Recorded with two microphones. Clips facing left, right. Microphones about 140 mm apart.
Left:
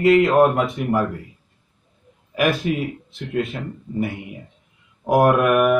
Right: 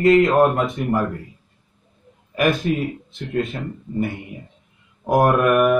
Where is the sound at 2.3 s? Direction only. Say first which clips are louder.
Right 1 dB; 5° left (ahead or behind).